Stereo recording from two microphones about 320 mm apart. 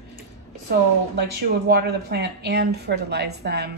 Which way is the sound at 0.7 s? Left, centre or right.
Right.